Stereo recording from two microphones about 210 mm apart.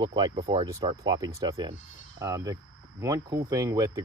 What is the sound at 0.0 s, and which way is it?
Speech, 20° right (ahead or behind).